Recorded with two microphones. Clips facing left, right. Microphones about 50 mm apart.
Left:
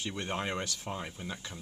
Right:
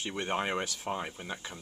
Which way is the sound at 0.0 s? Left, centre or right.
Centre.